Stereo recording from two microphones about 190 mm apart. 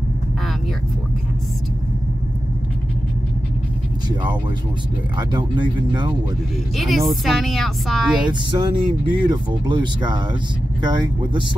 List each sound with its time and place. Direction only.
5.1 s speech: 25° right (ahead or behind)
6.8 s a woman's voice: centre (ahead or behind)
8.3 s speech: 25° right (ahead or behind)